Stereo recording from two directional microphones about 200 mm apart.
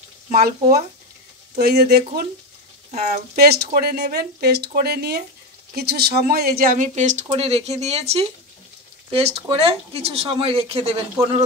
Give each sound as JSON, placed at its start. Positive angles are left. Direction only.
{"t": 0.3, "sound": "speech", "side_deg": -45}
{"t": 3.3, "sound": "speech", "side_deg": -50}